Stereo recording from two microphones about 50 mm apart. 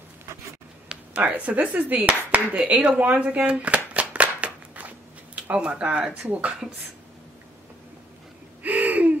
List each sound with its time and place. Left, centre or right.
0.8 s speech: right
2.7 s a sound: right
6.2 s speech: right
8.6 s gasp: right